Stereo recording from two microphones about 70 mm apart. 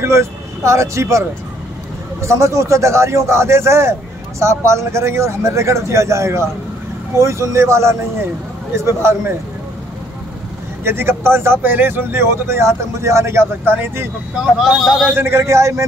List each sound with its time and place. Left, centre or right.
0.0 s speech: right
2.2 s a man's voice: right
10.8 s a man's voice: right
14.4 s speech: centre
15.1 s speech: right